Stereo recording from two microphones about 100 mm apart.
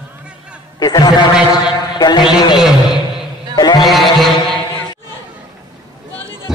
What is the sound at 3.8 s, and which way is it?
Music, centre (ahead or behind).